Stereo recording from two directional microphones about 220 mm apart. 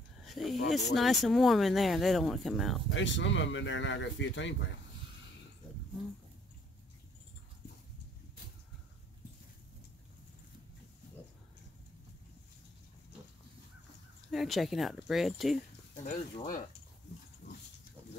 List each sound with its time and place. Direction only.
0.2 s snake: centre (ahead or behind)
0.9 s speech: centre (ahead or behind)
2.9 s speech: 55° left (ahead or behind)
14.3 s speech: centre (ahead or behind)
16.0 s speech: 30° left (ahead or behind)